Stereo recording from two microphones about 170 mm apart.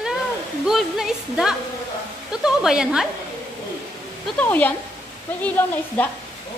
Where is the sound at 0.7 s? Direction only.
5° right (ahead or behind).